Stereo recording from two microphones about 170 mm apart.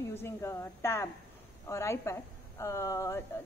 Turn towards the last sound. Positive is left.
turn(degrees=20)  # may be behind; listen again after turning